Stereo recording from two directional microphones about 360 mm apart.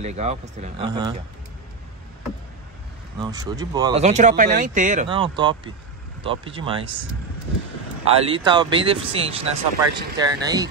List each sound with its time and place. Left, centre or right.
0.0 s speech: centre
3.2 s speech: centre
8.0 s speech: centre